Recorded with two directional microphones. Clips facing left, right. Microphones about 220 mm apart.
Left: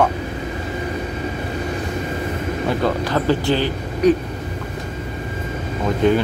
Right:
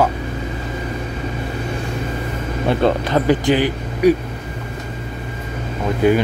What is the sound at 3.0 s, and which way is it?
A man's voice, 15° right (ahead or behind).